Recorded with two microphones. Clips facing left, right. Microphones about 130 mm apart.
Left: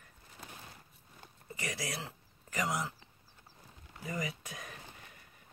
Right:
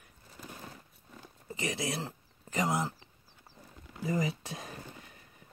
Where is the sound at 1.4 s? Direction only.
25° right (ahead or behind).